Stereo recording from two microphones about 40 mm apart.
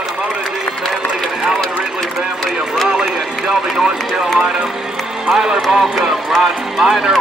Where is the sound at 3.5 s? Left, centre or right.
Right.